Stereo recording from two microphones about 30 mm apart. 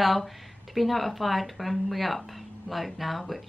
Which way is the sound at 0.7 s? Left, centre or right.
Centre.